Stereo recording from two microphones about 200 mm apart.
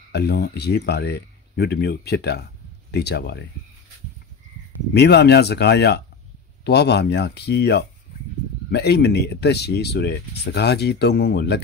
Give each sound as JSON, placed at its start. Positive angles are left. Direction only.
{"t": 0.1, "sound": "speech", "side_deg": 55}
{"t": 4.9, "sound": "speech", "side_deg": 55}